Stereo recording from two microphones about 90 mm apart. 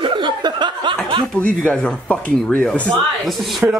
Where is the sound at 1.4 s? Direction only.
15° left (ahead or behind).